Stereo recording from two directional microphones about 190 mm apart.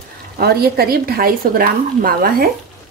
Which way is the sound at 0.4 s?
55° right (ahead or behind).